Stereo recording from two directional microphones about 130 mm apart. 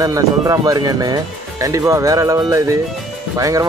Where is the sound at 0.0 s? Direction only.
25° right (ahead or behind).